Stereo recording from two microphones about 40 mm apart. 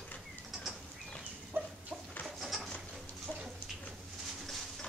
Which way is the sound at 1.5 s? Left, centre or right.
Right.